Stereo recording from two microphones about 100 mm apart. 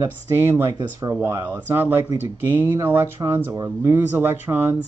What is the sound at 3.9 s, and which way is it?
Speech, 20° right (ahead or behind).